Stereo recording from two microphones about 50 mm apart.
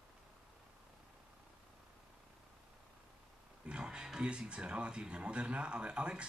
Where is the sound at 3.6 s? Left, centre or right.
Centre.